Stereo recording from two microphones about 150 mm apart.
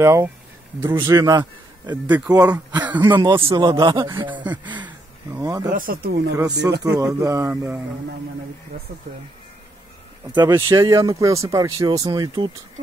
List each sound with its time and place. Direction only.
0.0 s a man's voice: 20° right (ahead or behind)
5.7 s speech: 70° right (ahead or behind); by 6.3 s 90° right
6.3 s speech: 25° right (ahead or behind)
10.5 s speech: 20° right (ahead or behind)